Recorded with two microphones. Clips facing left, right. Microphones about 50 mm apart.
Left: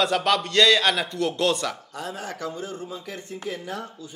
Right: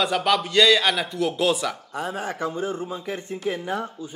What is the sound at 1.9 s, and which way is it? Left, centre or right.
A man's voice, right.